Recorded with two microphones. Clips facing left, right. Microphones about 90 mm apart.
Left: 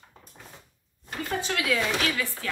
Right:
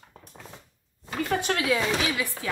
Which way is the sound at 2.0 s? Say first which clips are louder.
Even; 15° right (ahead or behind).